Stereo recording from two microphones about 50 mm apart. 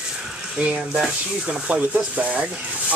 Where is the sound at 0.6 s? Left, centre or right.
Right.